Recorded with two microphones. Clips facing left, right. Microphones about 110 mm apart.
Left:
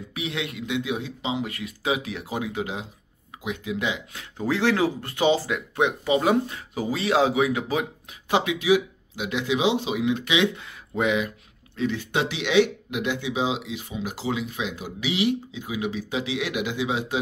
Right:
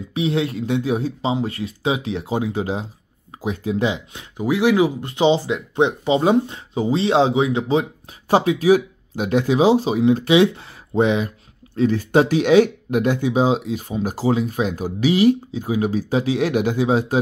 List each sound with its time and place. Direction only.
0.1 s speech: 30° right (ahead or behind)
8.3 s speech: 40° right (ahead or behind)